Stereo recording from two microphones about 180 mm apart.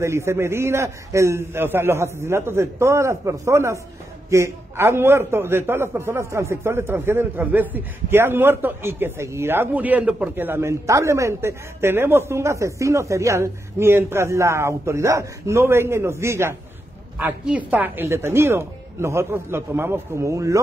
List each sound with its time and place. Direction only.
0.0 s a man's voice: 15° right (ahead or behind)